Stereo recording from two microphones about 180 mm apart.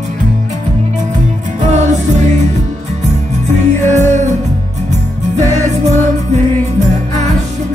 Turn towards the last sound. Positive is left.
turn(degrees=-40)  # may be behind; listen again after turning